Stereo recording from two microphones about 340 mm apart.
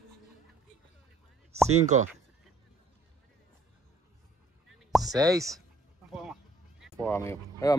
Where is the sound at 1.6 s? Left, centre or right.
Centre.